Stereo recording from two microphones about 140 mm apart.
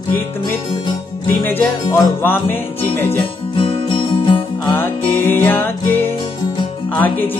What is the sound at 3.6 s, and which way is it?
Music, 40° left (ahead or behind).